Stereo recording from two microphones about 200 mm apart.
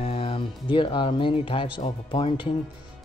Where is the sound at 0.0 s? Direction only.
30° left (ahead or behind).